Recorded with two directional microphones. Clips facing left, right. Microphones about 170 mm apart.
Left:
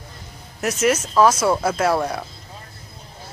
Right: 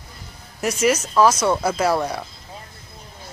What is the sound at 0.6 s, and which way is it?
Speech, centre (ahead or behind).